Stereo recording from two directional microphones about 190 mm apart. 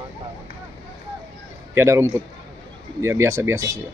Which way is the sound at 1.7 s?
15° right (ahead or behind).